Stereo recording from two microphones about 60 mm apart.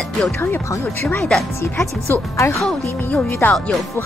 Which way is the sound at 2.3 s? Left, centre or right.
Left.